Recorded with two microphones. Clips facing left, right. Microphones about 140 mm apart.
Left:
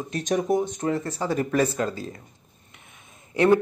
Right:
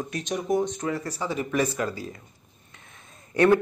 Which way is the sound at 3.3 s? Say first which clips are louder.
Even; 20° left (ahead or behind).